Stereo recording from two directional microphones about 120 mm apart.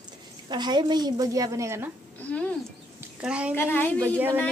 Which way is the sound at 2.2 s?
10° left (ahead or behind).